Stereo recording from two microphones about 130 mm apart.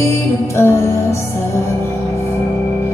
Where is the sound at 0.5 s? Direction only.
20° left (ahead or behind).